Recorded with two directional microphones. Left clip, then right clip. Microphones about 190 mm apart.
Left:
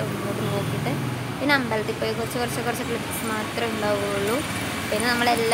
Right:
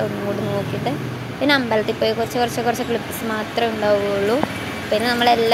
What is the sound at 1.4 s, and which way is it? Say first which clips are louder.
Speech: right 5 dB; 20° right (ahead or behind).